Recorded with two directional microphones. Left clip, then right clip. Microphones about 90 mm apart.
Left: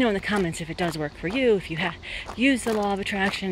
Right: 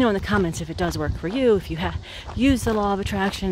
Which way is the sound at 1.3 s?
65° right (ahead or behind).